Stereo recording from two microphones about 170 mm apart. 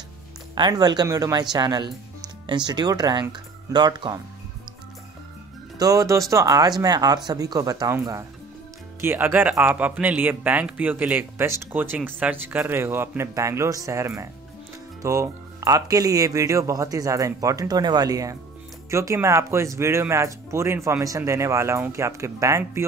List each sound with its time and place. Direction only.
0.6 s speech: 25° right (ahead or behind)
5.8 s a man's voice: 20° right (ahead or behind)